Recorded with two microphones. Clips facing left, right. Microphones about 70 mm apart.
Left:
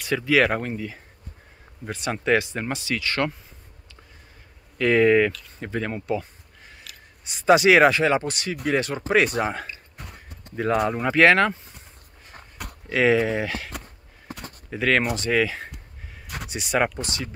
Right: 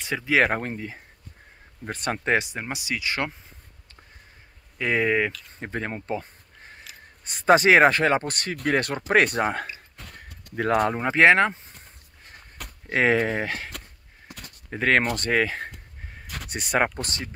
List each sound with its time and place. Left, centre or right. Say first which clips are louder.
0.0 s speech: left 2 dB; right
2.2 s speech: left 3 dB; right
4.7 s speech: left 6 dB; centre
5.6 s speech: left 2 dB; right
11.0 s speech: left 1 dB; right
12.6 s walk: left 4 dB; centre
12.9 s speech: left 2 dB; right
14.3 s a sound: left 6 dB; left
14.7 s speech: even; right